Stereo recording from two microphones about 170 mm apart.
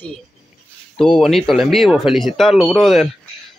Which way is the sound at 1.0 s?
5° left (ahead or behind).